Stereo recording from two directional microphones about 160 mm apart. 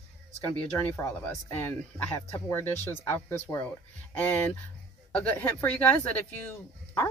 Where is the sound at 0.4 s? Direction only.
10° left (ahead or behind).